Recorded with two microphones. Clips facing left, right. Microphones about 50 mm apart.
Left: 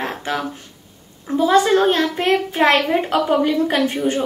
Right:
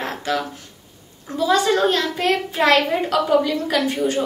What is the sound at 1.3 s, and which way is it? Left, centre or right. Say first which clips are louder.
A woman's voice: left 4 dB; left.